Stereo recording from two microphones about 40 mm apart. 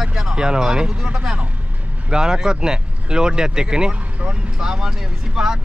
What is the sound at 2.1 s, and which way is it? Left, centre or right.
Speech, centre.